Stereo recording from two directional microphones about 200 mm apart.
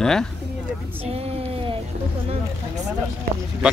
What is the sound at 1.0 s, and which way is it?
Speech, 30° right (ahead or behind).